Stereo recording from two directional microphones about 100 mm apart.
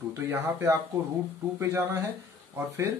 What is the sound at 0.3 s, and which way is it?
A man's voice, 25° right (ahead or behind).